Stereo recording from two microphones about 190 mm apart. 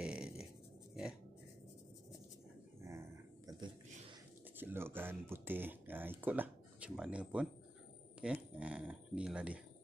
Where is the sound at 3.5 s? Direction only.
20° right (ahead or behind).